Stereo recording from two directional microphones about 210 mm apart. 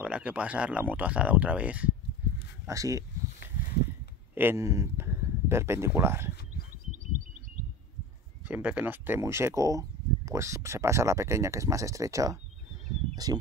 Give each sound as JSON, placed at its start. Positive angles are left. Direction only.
{"t": 0.0, "sound": "speech", "side_deg": -5}
{"t": 4.4, "sound": "speech", "side_deg": -10}
{"t": 8.5, "sound": "speech", "side_deg": -10}